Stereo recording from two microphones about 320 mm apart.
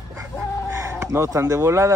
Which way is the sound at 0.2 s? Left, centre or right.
Centre.